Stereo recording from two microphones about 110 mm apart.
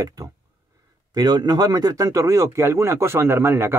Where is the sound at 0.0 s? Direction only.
30° right (ahead or behind).